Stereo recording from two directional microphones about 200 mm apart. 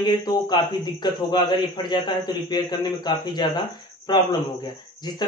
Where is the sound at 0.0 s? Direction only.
20° left (ahead or behind).